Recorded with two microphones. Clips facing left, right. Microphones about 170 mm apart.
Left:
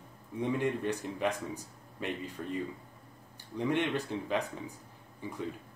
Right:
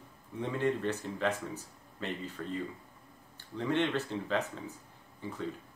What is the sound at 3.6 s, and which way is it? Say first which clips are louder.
Speech: even; 15° left (ahead or behind).